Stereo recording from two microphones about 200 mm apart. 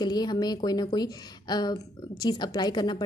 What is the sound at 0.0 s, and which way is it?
A woman's voice, 20° left (ahead or behind).